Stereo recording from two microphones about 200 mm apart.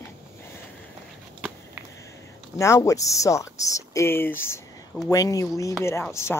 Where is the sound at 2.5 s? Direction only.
15° left (ahead or behind).